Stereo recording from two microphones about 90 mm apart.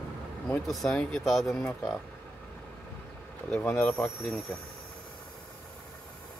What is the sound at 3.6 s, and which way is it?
Speech, 15° left (ahead or behind).